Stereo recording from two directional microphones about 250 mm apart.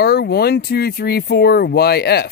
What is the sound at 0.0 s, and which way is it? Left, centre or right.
Speech, left.